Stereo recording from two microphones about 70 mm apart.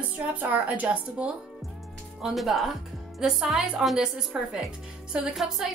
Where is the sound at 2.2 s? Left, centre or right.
Centre.